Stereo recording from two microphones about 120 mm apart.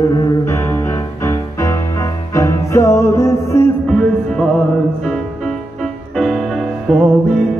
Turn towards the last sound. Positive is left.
turn(degrees=0)  # may be behind; listen again after turning